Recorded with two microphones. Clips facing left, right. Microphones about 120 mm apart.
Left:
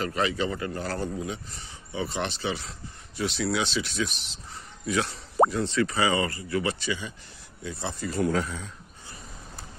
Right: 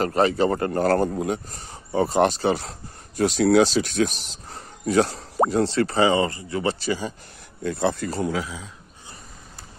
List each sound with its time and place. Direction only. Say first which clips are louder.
0.0 s a man's voice: right 7 dB; 40° right (ahead or behind)
7.6 s speech: right 10 dB; 60° right (ahead or behind)
8.3 s speech: even; 5° right (ahead or behind)